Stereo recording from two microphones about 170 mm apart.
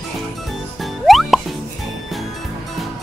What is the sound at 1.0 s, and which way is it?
Music, centre (ahead or behind).